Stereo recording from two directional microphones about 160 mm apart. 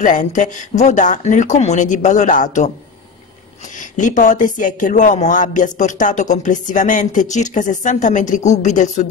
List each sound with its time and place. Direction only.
0.0 s speech: 50° left (ahead or behind)
3.9 s speech: 50° left (ahead or behind)